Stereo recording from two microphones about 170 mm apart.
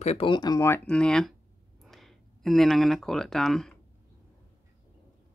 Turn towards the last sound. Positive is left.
turn(degrees=0)  # may be behind; listen again after turning